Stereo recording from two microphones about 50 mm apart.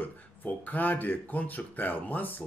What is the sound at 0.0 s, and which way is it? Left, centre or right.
Speech, left.